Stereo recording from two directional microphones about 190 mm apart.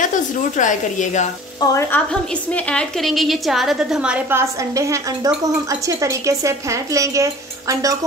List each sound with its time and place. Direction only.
0.0 s a woman's voice: 40° left (ahead or behind)
1.6 s frying: 15° left (ahead or behind)
2.5 s a woman's voice: 5° left (ahead or behind); by 8.0 s 20° right (ahead or behind)